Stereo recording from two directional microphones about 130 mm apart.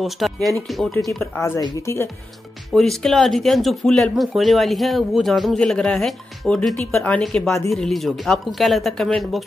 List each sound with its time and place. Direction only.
0.0 s speech: centre (ahead or behind)
1.3 s speech: 20° left (ahead or behind)
2.7 s speech: 5° left (ahead or behind)